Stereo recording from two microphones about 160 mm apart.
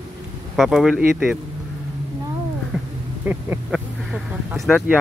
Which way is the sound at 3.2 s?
10° right (ahead or behind).